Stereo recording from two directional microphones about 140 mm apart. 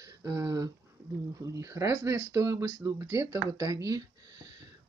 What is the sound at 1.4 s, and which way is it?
Speech, 20° right (ahead or behind).